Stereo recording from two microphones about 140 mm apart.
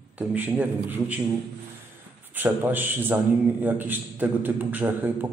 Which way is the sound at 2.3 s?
15° right (ahead or behind).